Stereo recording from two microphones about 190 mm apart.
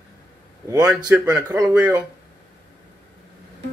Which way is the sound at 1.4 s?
20° right (ahead or behind).